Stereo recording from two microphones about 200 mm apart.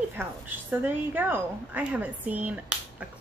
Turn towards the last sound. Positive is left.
turn(degrees=-5)  # may be behind; listen again after turning